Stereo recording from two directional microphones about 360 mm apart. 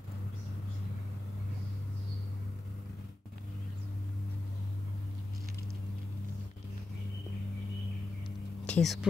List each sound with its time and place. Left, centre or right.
8.6 s speech: centre